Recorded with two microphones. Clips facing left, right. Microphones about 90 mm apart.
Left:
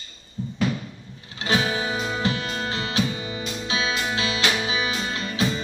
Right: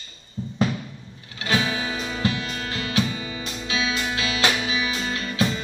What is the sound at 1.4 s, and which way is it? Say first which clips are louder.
Music: left 1 dB; 30° left (ahead or behind).